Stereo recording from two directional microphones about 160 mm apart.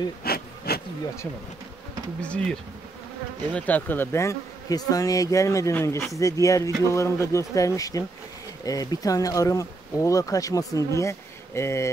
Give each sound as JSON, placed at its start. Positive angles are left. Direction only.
{"t": 0.2, "sound": "bee", "side_deg": 70}
{"t": 2.2, "sound": "bee", "side_deg": 10}
{"t": 3.5, "sound": "speech", "side_deg": 10}